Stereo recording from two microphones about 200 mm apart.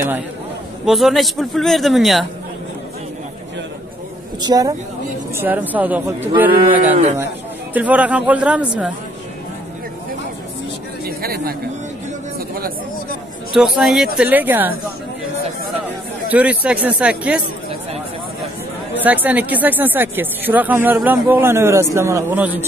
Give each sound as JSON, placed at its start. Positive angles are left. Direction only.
{"t": 0.8, "sound": "a man's voice", "side_deg": 0}
{"t": 4.4, "sound": "a woman's voice", "side_deg": -20}
{"t": 5.3, "sound": "speech", "side_deg": -10}
{"t": 11.1, "sound": "a sound", "side_deg": -50}
{"t": 13.6, "sound": "a man's voice", "side_deg": -5}
{"t": 16.3, "sound": "speech", "side_deg": -10}
{"t": 19.0, "sound": "speech", "side_deg": -10}